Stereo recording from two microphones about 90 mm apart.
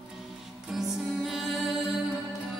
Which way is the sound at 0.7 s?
5° right (ahead or behind).